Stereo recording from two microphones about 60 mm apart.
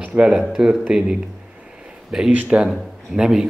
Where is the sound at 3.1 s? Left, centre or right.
Centre.